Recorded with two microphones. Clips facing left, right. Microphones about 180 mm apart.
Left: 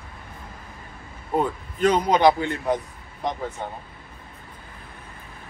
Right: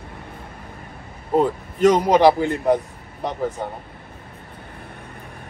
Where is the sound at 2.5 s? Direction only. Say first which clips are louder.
Right 6 dB; 35° right (ahead or behind).